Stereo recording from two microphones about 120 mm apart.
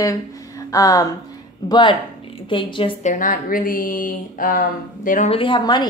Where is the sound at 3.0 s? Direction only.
90° left.